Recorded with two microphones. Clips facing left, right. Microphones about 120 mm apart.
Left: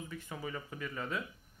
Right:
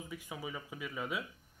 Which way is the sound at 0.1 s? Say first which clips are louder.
Even; 10° right (ahead or behind).